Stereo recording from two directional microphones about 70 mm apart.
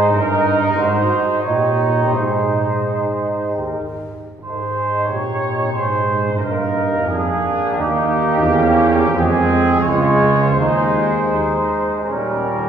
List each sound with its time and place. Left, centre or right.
0.8 s brass instrument: centre
8.1 s brass instrument: right
11.0 s brass instrument: centre